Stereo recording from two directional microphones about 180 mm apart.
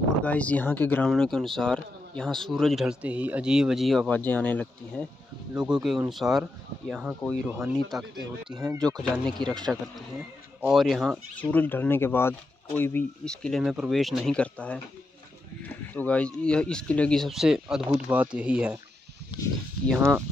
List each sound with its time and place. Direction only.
0.2 s speech: 10° left (ahead or behind)
5.6 s speech: 5° right (ahead or behind)
8.7 s speech: 5° left (ahead or behind)
20.0 s speech: 15° right (ahead or behind)